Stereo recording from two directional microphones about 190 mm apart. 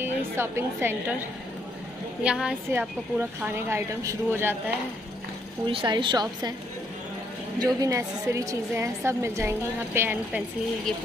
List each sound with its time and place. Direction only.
0.4 s a woman's voice: 15° right (ahead or behind)
2.2 s a woman's voice: 5° right (ahead or behind)
5.7 s a woman's voice: 25° right (ahead or behind)
7.5 s a woman's voice: 20° right (ahead or behind)